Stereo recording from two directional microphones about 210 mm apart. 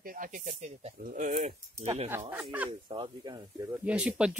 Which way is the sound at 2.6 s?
20° right (ahead or behind).